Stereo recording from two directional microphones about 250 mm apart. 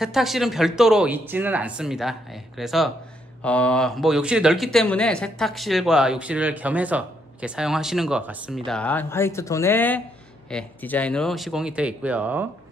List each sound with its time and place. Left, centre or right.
0.0 s speech: centre